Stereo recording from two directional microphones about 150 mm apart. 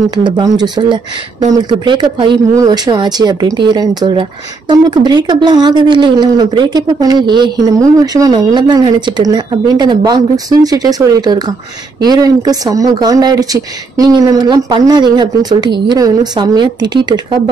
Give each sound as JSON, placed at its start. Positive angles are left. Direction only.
{"t": 0.1, "sound": "speech", "side_deg": -25}